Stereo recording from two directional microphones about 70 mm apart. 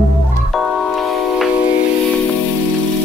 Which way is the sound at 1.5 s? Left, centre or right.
Centre.